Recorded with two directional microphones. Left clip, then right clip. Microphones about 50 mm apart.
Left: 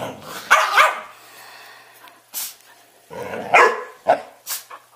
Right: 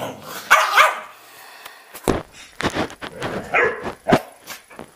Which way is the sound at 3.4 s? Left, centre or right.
Left.